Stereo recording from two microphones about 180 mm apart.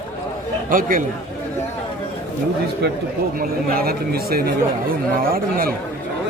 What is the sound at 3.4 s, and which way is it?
A man's voice, 55° right (ahead or behind).